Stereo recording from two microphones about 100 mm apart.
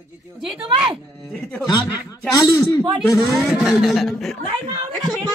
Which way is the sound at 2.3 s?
35° left (ahead or behind).